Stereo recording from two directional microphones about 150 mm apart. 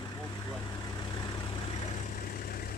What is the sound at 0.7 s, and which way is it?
Vehicle, 30° left (ahead or behind).